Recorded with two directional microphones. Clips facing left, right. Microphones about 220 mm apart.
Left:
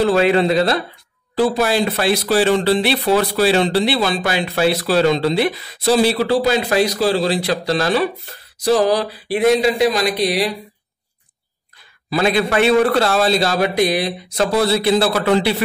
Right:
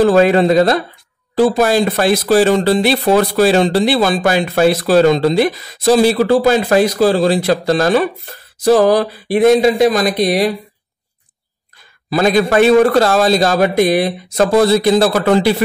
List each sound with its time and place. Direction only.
0.0 s speech: 45° right (ahead or behind)
12.1 s speech: 45° right (ahead or behind)